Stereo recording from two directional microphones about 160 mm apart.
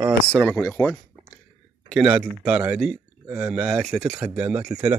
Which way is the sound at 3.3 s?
15° right (ahead or behind).